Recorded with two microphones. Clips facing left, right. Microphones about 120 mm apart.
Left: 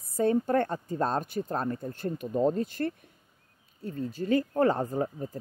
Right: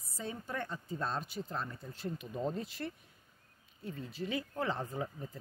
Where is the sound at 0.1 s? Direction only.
55° left (ahead or behind).